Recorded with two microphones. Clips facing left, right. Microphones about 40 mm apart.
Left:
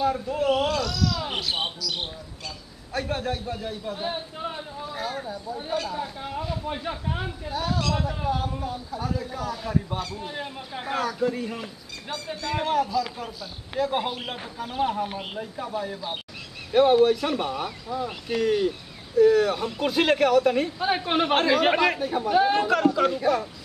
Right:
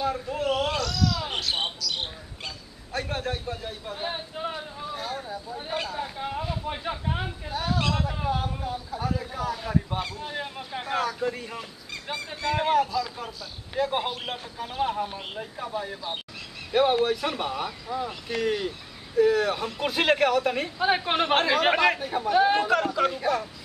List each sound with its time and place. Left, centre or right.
0.0 s speech: centre
0.7 s a sound: centre
2.9 s speech: centre
5.9 s a man's voice: centre
12.1 s a man's voice: centre